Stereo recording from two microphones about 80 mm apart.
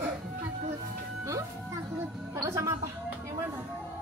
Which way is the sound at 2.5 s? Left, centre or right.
Right.